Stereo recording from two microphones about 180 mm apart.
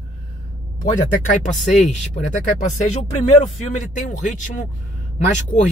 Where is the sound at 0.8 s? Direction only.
40° left (ahead or behind).